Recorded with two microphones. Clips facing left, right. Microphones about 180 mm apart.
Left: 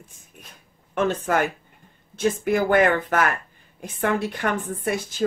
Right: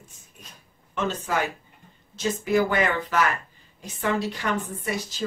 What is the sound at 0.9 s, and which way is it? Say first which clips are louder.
A woman's voice: left 5 dB; 55° left (ahead or behind).